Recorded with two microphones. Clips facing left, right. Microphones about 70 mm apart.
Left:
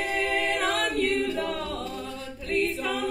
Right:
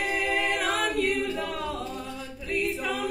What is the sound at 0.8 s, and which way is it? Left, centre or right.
Choir, centre.